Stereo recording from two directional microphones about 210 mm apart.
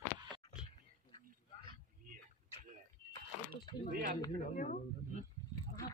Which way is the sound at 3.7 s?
20° left (ahead or behind).